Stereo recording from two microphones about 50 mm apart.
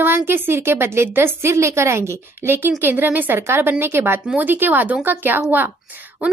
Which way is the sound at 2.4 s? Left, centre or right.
Right.